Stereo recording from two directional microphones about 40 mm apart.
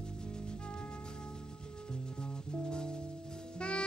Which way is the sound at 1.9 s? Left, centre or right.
Left.